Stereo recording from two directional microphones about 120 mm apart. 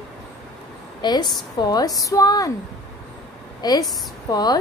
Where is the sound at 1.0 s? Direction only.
35° left (ahead or behind).